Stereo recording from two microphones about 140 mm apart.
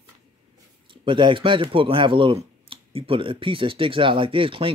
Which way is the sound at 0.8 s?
35° right (ahead or behind).